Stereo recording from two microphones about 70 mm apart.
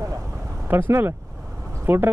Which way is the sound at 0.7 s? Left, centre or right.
Right.